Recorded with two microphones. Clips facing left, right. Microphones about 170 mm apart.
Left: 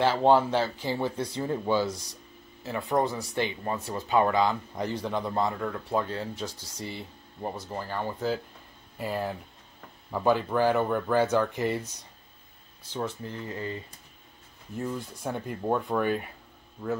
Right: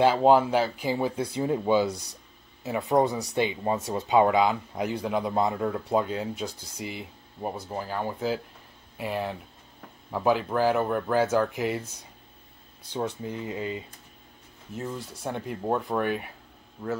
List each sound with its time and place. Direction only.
0.2 s a man's voice: 10° right (ahead or behind)
1.9 s speech: 65° right (ahead or behind)
2.6 s a man's voice: 15° right (ahead or behind)
12.9 s a man's voice: 15° right (ahead or behind)